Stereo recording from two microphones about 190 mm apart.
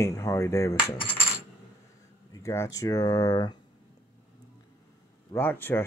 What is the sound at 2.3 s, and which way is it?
Speech, 15° left (ahead or behind).